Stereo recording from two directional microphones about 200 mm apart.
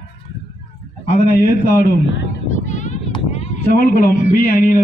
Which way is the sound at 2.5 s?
40° left (ahead or behind).